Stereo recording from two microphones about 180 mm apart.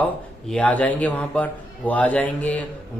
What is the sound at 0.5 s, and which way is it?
A man's voice, 10° left (ahead or behind).